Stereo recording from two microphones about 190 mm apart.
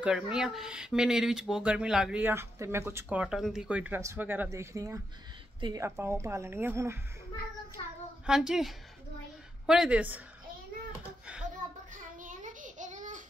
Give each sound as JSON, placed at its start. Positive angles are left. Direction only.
{"t": 0.0, "sound": "speech", "side_deg": -5}
{"t": 7.8, "sound": "a child's voice", "side_deg": 30}
{"t": 8.3, "sound": "a woman's voice", "side_deg": 0}
{"t": 12.2, "sound": "child singing", "side_deg": -40}